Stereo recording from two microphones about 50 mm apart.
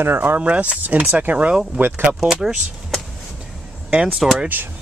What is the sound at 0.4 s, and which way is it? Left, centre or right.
Speech, right.